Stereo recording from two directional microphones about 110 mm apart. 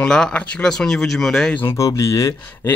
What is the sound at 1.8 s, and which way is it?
Speech, 30° left (ahead or behind).